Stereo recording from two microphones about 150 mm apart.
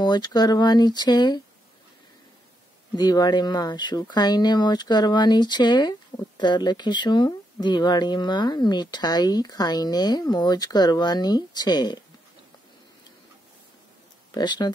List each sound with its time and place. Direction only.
0.0 s speech: 30° left (ahead or behind)
3.0 s speech: 25° left (ahead or behind)
14.3 s speech: 30° left (ahead or behind)